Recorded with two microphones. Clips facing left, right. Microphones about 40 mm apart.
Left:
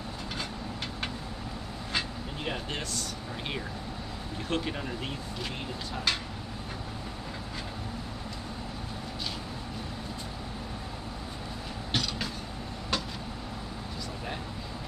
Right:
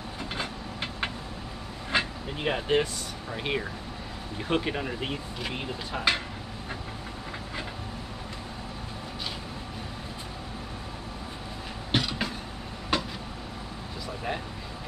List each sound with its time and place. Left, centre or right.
1.9 s vehicle: right
4.5 s speech: right
11.9 s train: centre
12.9 s vehicle: centre